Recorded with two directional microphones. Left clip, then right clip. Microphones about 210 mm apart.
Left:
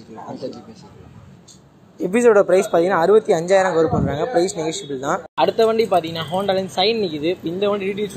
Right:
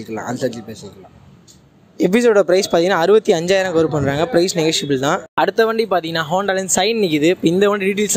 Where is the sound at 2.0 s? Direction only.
60° right (ahead or behind).